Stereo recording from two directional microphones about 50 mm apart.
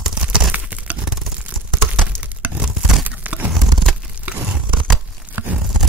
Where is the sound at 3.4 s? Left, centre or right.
Centre.